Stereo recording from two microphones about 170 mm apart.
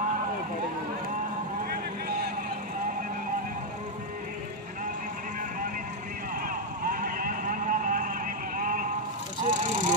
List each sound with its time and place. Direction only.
6.4 s vehicle: 55° right (ahead or behind)